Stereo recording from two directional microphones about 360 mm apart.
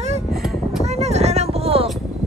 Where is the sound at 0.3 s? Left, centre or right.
Centre.